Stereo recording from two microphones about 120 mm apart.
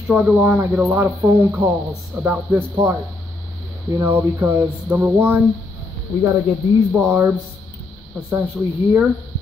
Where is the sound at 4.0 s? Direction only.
20° right (ahead or behind).